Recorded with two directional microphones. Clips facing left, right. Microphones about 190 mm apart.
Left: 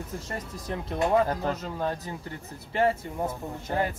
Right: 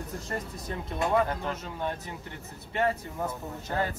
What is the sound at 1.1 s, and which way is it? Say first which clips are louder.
Speech: left 2 dB; 35° left (ahead or behind).